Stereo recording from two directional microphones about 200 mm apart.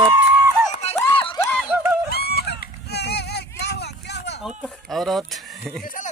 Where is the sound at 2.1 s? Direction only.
50° left (ahead or behind).